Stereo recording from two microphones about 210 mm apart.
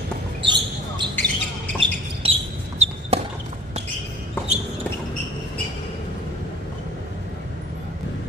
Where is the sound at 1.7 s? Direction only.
25° right (ahead or behind).